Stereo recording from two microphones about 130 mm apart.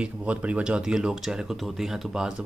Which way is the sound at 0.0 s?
10° right (ahead or behind).